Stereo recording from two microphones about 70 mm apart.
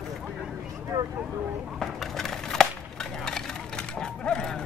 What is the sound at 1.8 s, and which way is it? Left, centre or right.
Wood, centre.